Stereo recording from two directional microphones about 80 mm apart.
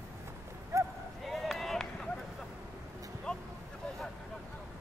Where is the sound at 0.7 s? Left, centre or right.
Right.